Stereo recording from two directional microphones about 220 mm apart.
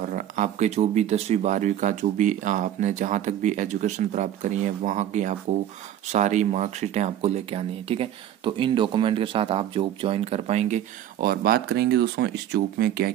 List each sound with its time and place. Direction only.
0.0 s speech: 35° right (ahead or behind)